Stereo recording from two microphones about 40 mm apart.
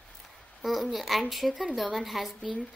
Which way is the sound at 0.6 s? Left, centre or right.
Centre.